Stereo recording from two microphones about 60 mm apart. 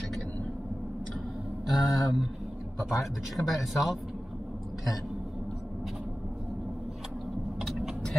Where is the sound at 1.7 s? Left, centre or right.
Left.